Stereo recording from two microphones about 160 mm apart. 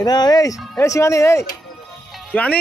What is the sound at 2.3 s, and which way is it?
Speech, 10° left (ahead or behind).